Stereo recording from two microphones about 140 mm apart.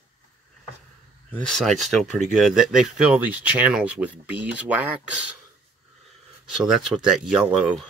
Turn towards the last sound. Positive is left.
turn(degrees=-5)  # may be behind; listen again after turning